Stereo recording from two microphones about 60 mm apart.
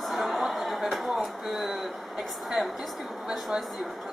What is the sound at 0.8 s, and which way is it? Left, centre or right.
Speech, centre.